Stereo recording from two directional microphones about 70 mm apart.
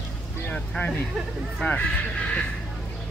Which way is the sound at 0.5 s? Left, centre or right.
Centre.